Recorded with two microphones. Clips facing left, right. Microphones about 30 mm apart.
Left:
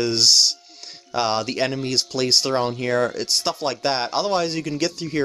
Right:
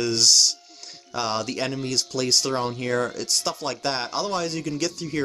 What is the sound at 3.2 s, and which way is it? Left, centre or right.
Speech, left.